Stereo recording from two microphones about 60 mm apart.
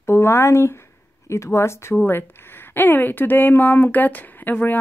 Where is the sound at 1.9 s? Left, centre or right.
Left.